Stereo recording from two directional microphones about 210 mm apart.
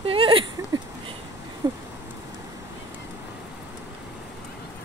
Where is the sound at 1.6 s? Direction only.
20° right (ahead or behind).